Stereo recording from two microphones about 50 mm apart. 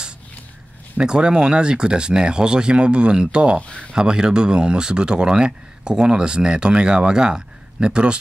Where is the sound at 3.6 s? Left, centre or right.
Left.